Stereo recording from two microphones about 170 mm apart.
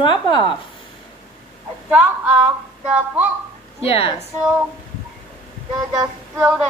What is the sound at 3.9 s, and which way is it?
Speech, 35° left (ahead or behind).